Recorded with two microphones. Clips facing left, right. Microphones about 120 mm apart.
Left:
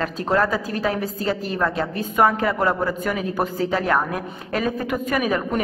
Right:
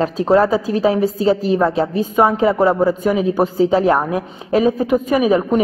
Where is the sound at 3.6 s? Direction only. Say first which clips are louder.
Right 5 dB; 30° right (ahead or behind).